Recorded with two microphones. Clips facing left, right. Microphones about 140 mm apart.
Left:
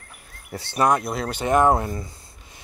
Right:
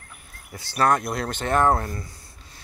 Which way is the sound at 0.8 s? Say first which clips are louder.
Even; 5° left (ahead or behind).